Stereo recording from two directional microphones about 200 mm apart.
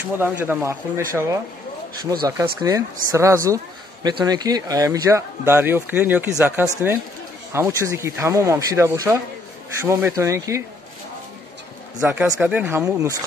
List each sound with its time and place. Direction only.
0.2 s speech: 10° right (ahead or behind)
12.0 s speech: 10° right (ahead or behind)